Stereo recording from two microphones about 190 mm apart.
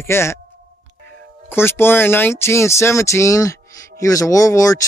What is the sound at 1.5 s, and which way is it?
Speech, 10° left (ahead or behind).